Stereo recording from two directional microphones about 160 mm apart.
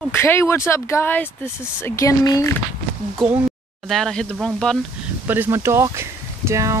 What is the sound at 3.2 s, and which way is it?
Speech, centre (ahead or behind).